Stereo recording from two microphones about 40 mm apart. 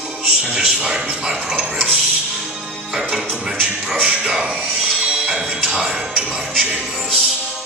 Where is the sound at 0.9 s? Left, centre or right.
Right.